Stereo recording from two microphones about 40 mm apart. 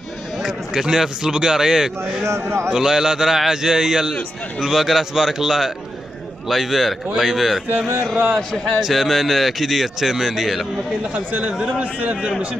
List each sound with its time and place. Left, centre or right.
0.4 s a man's voice: centre
11.1 s a man's voice: right